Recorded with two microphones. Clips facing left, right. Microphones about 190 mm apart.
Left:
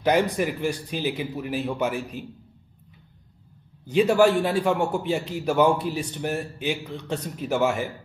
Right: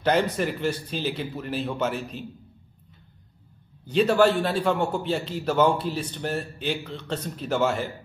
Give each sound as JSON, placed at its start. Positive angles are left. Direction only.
{"t": 0.0, "sound": "a man's voice", "side_deg": 15}
{"t": 3.9, "sound": "a man's voice", "side_deg": 15}